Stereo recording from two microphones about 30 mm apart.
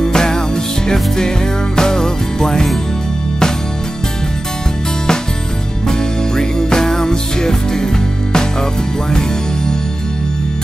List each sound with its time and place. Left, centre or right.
0.0 s music: left
1.8 s music: centre
5.9 s music: left